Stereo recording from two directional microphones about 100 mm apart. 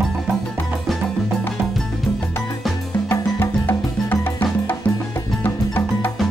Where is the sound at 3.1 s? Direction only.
20° left (ahead or behind).